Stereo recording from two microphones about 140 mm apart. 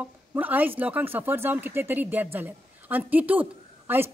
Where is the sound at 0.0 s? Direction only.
10° right (ahead or behind).